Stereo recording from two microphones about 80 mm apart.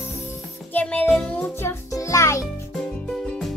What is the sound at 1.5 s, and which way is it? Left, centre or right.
Speech, left.